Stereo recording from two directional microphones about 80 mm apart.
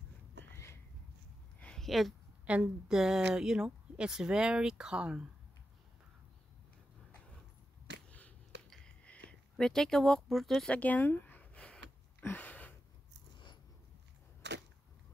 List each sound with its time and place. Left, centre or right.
1.8 s speech: centre
2.4 s speech: centre
9.0 s speech: centre
10.7 s a sound: centre